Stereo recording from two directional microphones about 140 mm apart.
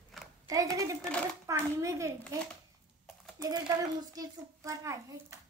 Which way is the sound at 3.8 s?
25° right (ahead or behind).